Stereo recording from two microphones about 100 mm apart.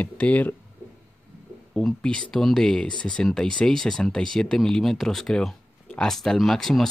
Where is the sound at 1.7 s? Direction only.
5° left (ahead or behind).